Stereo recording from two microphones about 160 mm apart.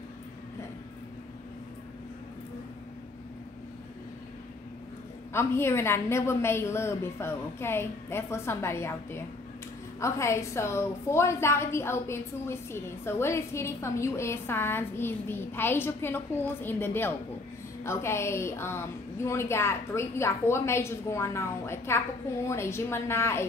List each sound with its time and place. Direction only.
5.3 s a woman's voice: 15° left (ahead or behind)